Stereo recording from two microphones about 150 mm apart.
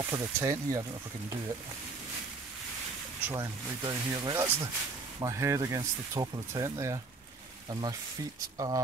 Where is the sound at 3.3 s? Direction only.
25° right (ahead or behind).